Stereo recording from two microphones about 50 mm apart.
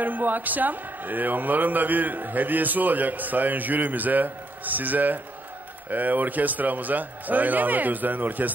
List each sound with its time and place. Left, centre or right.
0.0 s a man's voice: right